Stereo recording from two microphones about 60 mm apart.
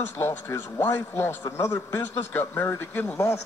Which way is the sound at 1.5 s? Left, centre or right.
Left.